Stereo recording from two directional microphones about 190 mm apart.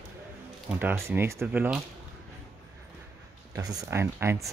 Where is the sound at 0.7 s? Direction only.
10° right (ahead or behind).